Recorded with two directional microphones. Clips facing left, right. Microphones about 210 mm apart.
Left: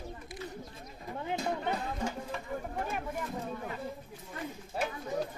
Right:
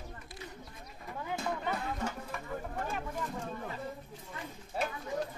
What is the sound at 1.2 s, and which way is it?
Music, 20° left (ahead or behind).